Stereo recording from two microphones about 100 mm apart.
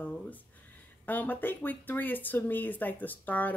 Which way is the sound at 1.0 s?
15° left (ahead or behind).